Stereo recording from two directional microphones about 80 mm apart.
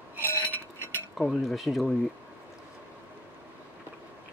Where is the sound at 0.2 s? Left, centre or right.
Left.